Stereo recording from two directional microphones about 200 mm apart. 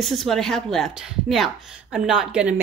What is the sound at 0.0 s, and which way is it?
Speech, centre (ahead or behind).